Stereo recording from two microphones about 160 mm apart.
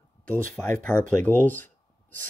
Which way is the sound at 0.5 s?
10° left (ahead or behind).